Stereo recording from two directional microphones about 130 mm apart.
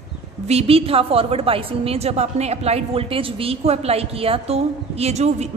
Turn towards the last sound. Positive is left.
turn(degrees=-60)  # may be behind; listen again after turning